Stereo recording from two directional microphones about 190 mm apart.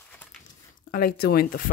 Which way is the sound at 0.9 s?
50° left (ahead or behind).